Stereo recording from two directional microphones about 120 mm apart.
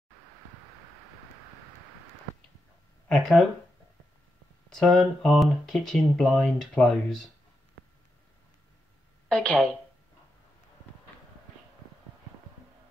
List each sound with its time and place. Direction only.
3.1 s speech: 5° left (ahead or behind)
4.7 s speech: 5° left (ahead or behind)
9.3 s a woman's voice: 10° left (ahead or behind)